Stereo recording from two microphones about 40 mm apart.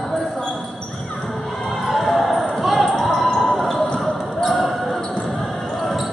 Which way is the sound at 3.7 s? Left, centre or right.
Left.